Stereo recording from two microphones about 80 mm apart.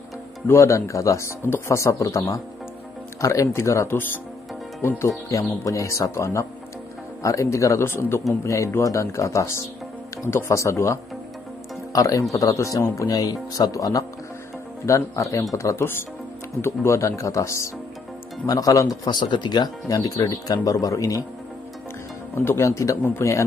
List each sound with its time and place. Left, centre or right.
0.5 s speech: left
12.8 s speech: left
13.1 s speech: left
19.0 s speech: left
22.3 s speech: left